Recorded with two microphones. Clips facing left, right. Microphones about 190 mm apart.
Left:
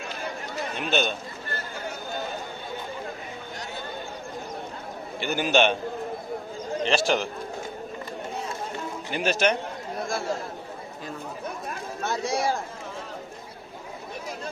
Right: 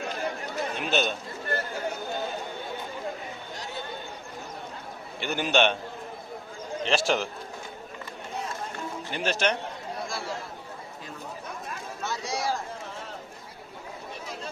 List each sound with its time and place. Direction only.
0.7 s a man's voice: centre (ahead or behind)
5.2 s a man's voice: 5° left (ahead or behind)
6.8 s a man's voice: centre (ahead or behind)
9.1 s a man's voice: 10° left (ahead or behind)
12.0 s speech: 55° left (ahead or behind)